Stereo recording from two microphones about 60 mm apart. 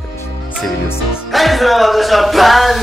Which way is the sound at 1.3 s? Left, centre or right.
Centre.